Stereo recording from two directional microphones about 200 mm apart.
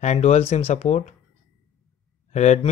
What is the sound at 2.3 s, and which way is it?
Speech, 35° left (ahead or behind).